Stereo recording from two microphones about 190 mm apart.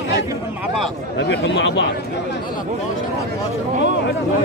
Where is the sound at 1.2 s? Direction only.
70° left (ahead or behind).